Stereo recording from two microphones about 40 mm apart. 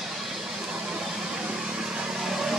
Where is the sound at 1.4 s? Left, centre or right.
Right.